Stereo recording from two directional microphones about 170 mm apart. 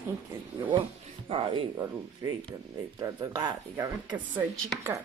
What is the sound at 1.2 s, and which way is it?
Speech, 30° right (ahead or behind).